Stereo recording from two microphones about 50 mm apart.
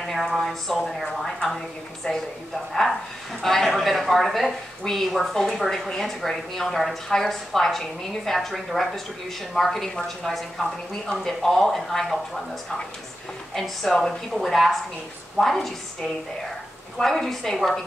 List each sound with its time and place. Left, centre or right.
0.0 s a woman's voice: centre
1.2 s a sound: centre
2.1 s speech: centre
2.7 s speech: centre
13.6 s a woman's voice: centre